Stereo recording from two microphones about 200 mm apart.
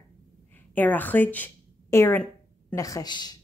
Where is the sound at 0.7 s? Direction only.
10° left (ahead or behind).